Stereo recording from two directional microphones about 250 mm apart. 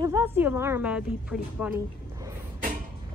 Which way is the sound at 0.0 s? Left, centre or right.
Centre.